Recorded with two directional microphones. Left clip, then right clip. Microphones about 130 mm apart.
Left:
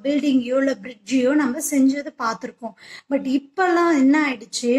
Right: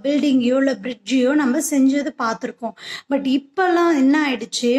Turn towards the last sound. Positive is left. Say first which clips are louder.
# right 2 dB
turn(degrees=-35)  # may be behind; listen again after turning